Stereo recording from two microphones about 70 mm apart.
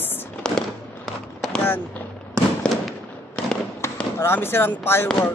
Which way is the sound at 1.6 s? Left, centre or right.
Left.